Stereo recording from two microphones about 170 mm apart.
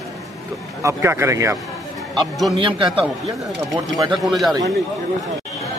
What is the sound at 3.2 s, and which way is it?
Speech, 20° right (ahead or behind).